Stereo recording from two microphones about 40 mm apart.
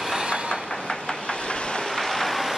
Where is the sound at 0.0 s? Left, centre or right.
Centre.